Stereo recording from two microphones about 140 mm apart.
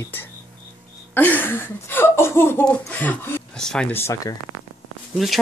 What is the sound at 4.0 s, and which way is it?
Speech, 20° left (ahead or behind).